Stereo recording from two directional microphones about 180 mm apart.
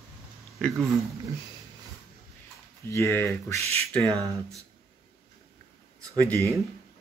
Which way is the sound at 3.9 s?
5° left (ahead or behind).